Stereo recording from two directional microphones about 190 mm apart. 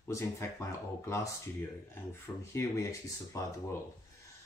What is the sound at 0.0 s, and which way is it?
Speech, 15° left (ahead or behind).